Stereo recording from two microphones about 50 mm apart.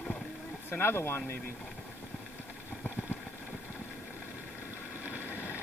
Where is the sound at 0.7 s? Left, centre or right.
Left.